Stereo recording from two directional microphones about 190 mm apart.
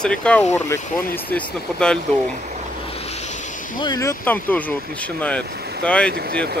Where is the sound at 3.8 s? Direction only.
20° left (ahead or behind).